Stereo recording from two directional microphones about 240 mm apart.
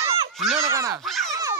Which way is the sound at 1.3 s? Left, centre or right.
Centre.